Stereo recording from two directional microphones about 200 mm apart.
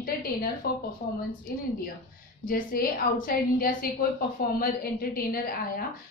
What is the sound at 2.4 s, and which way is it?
A woman's voice, 45° left (ahead or behind).